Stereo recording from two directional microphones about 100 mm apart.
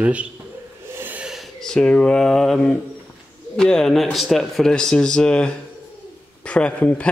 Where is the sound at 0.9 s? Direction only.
20° right (ahead or behind).